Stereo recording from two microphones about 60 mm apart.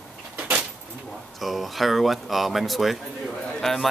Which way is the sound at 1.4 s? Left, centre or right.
Centre.